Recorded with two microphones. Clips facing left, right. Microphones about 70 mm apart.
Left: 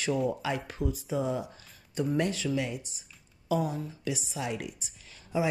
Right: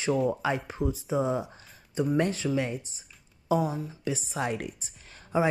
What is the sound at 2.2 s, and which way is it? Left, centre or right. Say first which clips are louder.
Speech: right 2 dB; right.